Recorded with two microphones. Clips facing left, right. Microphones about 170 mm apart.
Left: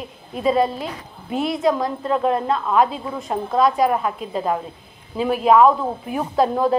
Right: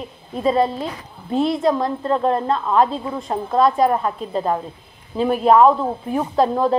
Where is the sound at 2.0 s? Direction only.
5° left (ahead or behind).